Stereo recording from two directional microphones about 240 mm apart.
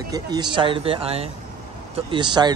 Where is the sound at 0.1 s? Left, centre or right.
Centre.